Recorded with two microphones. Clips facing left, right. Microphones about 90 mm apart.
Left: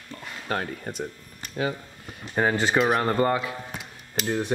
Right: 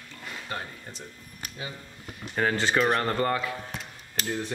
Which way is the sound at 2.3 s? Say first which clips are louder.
Left 3 dB; 15° left (ahead or behind).